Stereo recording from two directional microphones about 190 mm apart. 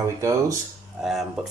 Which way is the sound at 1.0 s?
Centre (ahead or behind).